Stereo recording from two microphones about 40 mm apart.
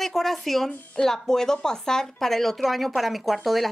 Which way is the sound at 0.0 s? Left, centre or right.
Centre.